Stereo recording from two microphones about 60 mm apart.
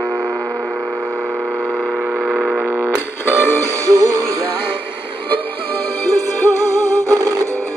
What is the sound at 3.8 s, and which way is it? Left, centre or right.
Music, right.